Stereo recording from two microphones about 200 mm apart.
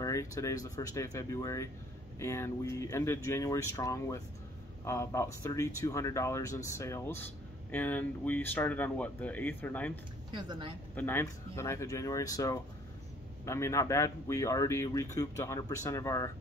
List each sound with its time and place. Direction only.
0.0 s speech: 15° left (ahead or behind)
10.3 s speech: 25° right (ahead or behind)
11.0 s speech: 10° left (ahead or behind)